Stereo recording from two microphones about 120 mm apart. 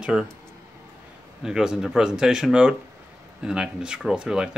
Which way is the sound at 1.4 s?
5° right (ahead or behind).